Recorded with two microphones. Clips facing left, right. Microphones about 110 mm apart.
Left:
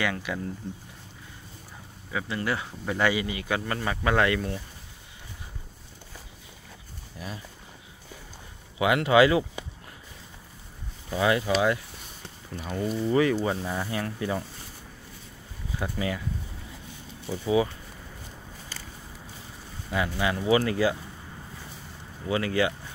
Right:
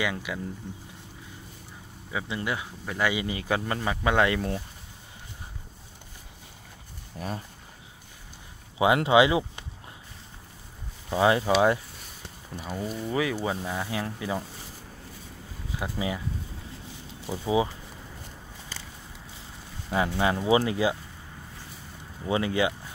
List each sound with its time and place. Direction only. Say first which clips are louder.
0.0 s speech: left 1 dB; 10° right (ahead or behind)
2.1 s speech: left 1 dB; 15° right (ahead or behind)
3.3 s speech: right 1 dB; 30° right (ahead or behind)
7.2 s speech: right 4 dB; 45° right (ahead or behind)
8.7 s speech: even; 25° right (ahead or behind)
11.1 s speech: right 2 dB; 25° right (ahead or behind)
12.5 s speech: left 4 dB; 5° right (ahead or behind)
15.8 s speech: left 1 dB; 15° right (ahead or behind)
17.3 s speech: left 1 dB; 25° right (ahead or behind)
19.9 s speech: right 2 dB; 30° right (ahead or behind)
22.2 s speech: even; 20° right (ahead or behind)